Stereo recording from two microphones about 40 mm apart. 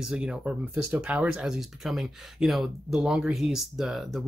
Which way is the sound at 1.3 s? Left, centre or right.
Centre.